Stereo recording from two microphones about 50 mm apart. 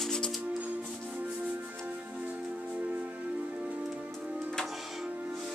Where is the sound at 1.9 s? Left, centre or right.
Right.